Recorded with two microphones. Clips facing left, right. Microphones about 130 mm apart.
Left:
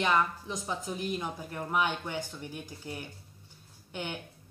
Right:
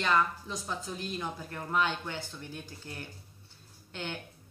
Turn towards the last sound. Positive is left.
turn(degrees=15)  # may be behind; listen again after turning